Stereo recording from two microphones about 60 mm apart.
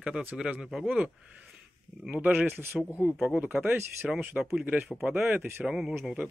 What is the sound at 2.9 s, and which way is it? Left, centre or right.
Speech, left.